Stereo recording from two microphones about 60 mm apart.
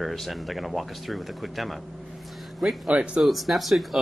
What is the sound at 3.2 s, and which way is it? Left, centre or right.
Speech, centre.